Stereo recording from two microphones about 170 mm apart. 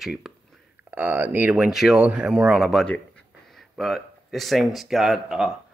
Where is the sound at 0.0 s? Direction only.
Centre (ahead or behind).